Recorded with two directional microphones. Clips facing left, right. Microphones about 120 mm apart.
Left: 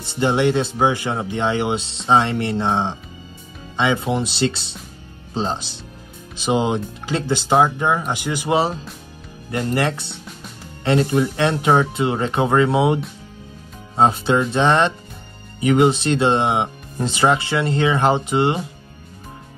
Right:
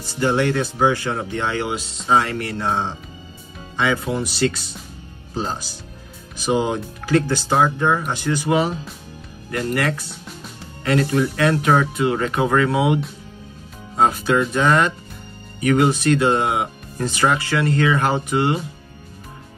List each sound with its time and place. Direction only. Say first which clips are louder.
0.0 s speech: left 1 dB; 25° left (ahead or behind)